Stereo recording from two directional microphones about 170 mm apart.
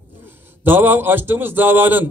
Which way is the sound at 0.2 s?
10° right (ahead or behind).